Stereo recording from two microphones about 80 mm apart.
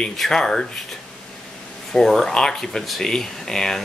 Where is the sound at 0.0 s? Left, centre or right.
Centre.